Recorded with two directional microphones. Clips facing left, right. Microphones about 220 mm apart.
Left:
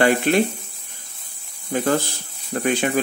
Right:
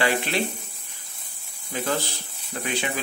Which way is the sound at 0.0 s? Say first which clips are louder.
Left 7 dB; 50° left (ahead or behind).